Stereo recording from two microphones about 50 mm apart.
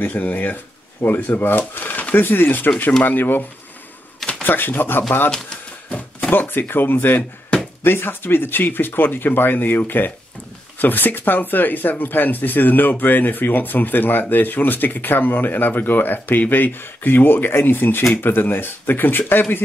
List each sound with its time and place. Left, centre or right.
0.0 s speech: left
4.5 s speech: left
5.9 s a sound: left
6.3 s speech: left